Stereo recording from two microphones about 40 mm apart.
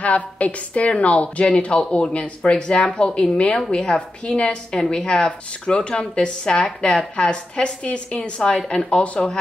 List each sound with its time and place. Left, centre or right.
0.0 s a woman's voice: left
8.5 s speech: left